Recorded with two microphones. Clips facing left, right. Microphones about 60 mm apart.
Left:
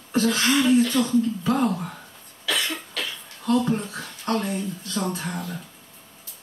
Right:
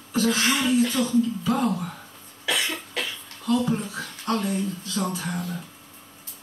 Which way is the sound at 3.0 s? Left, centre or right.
Right.